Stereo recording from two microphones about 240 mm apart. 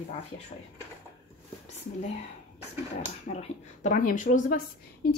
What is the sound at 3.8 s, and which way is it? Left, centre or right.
A woman's voice, left.